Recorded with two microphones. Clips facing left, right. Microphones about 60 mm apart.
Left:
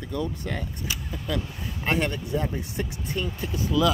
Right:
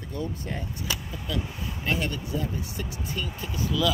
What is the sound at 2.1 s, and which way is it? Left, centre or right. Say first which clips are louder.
Speech: left 3 dB; left.